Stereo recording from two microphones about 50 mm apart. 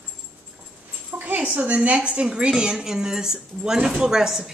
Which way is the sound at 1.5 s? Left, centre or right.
Right.